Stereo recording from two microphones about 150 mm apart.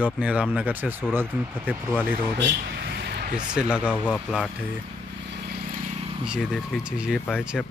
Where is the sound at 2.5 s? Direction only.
90° right.